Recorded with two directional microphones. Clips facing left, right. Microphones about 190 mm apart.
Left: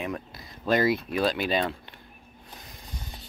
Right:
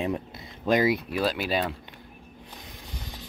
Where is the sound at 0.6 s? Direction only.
15° right (ahead or behind).